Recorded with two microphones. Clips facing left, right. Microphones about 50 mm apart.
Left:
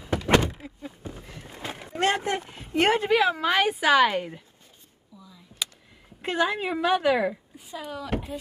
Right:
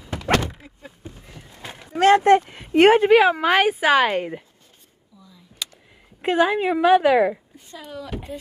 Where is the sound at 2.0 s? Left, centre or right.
Right.